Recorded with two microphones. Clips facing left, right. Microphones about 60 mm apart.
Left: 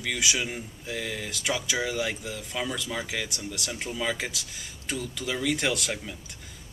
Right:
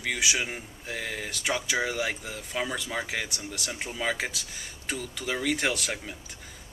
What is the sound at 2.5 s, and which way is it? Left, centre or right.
Speech, right.